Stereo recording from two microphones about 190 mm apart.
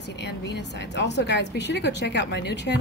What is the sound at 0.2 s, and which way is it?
Speech, 65° left (ahead or behind).